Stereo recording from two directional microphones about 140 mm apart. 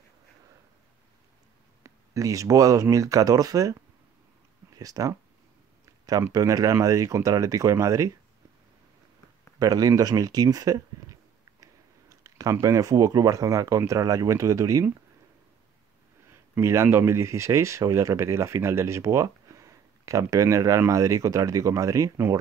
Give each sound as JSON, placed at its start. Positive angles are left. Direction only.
{"t": 1.8, "sound": "speech", "side_deg": -25}
{"t": 4.7, "sound": "speech", "side_deg": -25}
{"t": 9.6, "sound": "speech", "side_deg": -25}
{"t": 16.5, "sound": "speech", "side_deg": -20}